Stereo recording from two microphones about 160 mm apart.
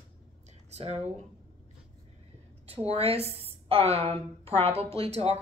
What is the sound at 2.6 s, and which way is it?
A woman's voice, 40° right (ahead or behind).